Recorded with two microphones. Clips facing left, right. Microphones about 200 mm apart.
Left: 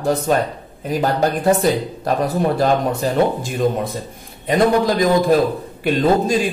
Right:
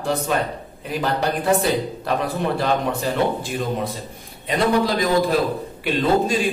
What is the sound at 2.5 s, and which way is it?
Speech, 45° left (ahead or behind).